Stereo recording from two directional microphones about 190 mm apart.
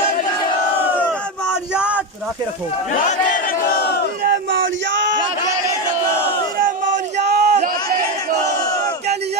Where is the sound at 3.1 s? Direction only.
45° left (ahead or behind).